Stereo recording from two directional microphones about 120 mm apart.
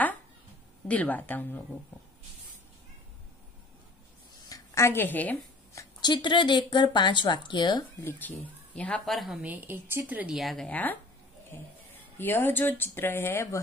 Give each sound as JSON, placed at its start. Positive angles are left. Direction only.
{"t": 0.8, "sound": "speech", "side_deg": 15}
{"t": 4.5, "sound": "a woman's voice", "side_deg": 25}
{"t": 5.8, "sound": "speech", "side_deg": 35}
{"t": 8.0, "sound": "speech", "side_deg": 15}
{"t": 9.4, "sound": "a woman's voice", "side_deg": -15}
{"t": 10.3, "sound": "speech", "side_deg": 0}
{"t": 10.7, "sound": "speech", "side_deg": 15}
{"t": 12.2, "sound": "speech", "side_deg": 15}